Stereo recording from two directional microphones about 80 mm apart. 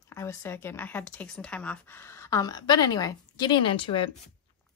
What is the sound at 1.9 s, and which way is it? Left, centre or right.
Speech, left.